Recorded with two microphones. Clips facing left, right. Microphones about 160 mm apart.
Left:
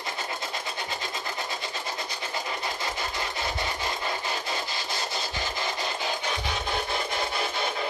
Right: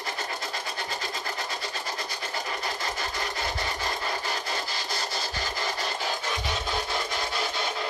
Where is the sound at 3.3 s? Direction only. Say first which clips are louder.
Left 1 dB; 20° left (ahead or behind).